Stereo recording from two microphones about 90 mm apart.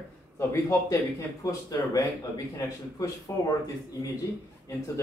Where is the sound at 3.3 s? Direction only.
30° left (ahead or behind).